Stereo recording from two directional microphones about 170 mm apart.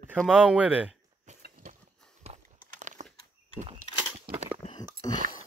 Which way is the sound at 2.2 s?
40° right (ahead or behind).